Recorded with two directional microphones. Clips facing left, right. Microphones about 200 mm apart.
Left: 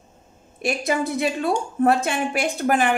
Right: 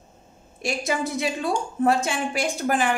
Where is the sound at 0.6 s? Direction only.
60° left (ahead or behind).